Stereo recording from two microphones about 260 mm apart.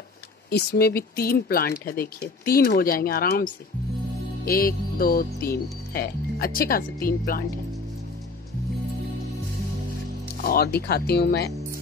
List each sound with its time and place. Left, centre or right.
0.5 s speech: left
10.4 s speech: left